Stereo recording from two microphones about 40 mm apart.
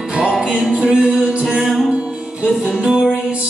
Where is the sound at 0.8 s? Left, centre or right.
Right.